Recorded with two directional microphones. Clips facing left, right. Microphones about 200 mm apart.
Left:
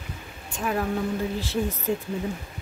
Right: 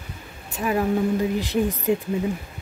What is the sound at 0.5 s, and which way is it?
Speech, 5° right (ahead or behind).